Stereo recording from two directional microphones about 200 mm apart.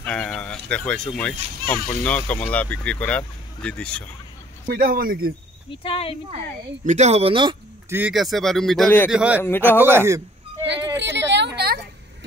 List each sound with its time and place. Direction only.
0.0 s speech: 5° left (ahead or behind)
4.6 s speech: 45° right (ahead or behind)
5.7 s speech: 30° left (ahead or behind)
6.3 s speech: 35° right (ahead or behind)
7.9 s speech: 5° right (ahead or behind)
9.1 s speech: 5° right (ahead or behind)
9.4 s speech: 10° left (ahead or behind)
9.8 s speech: 15° right (ahead or behind)
11.0 s vehicle: 60° right (ahead or behind)